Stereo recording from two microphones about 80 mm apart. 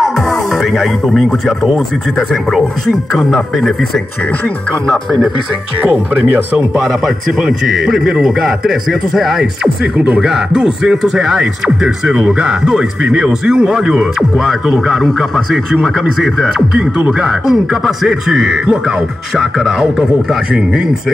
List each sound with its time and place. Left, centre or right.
0.7 s a man's voice: centre
5.8 s speech: centre
7.4 s a man's voice: centre
9.9 s speech: centre
10.2 s a man's voice: centre